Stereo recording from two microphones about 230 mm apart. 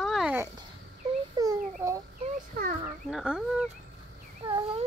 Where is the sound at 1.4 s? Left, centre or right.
Centre.